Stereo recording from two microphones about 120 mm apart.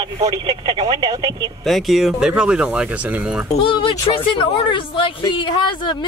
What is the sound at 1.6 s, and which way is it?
Speech, centre (ahead or behind).